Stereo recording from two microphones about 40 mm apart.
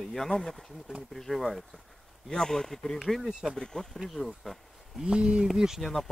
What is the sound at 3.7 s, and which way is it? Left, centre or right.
Speech, left.